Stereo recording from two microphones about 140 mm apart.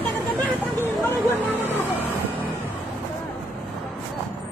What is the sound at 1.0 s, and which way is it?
Vehicle, 15° left (ahead or behind).